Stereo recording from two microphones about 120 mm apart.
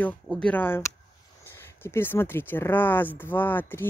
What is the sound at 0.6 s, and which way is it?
Speech, 15° left (ahead or behind).